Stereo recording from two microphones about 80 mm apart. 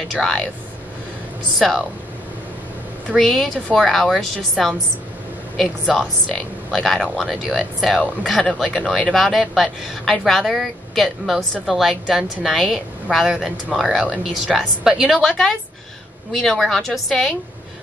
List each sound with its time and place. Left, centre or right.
0.1 s a man's voice: centre
1.6 s a man's voice: centre
3.2 s a man's voice: centre
15.2 s a woman's voice: centre